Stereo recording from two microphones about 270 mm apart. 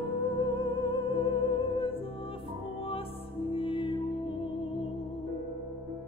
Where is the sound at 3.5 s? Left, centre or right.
Centre.